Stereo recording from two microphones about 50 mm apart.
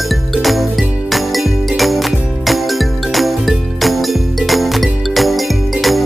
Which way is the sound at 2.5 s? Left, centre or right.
Centre.